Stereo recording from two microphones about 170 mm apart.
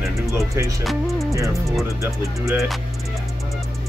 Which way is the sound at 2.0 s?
15° right (ahead or behind).